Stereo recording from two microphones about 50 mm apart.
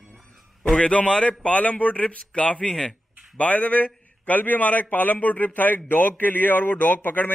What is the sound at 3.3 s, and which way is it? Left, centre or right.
A man's voice, left.